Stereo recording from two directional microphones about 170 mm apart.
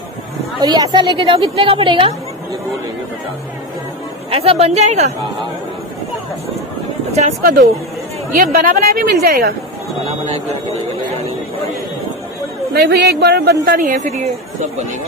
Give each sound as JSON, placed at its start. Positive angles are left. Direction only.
{"t": 0.6, "sound": "a woman's voice", "side_deg": -25}
{"t": 4.3, "sound": "a woman's voice", "side_deg": -35}
{"t": 8.3, "sound": "a woman's voice", "side_deg": -55}
{"t": 12.7, "sound": "speech", "side_deg": -75}
{"t": 13.7, "sound": "a woman's voice", "side_deg": -45}